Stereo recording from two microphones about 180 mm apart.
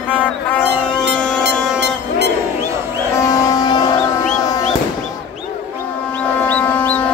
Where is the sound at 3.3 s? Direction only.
20° left (ahead or behind).